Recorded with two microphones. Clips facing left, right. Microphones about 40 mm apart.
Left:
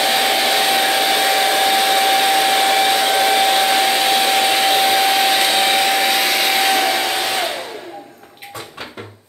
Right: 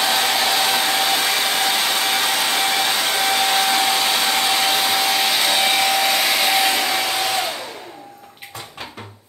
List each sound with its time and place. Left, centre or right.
0.0 s hair dryer: centre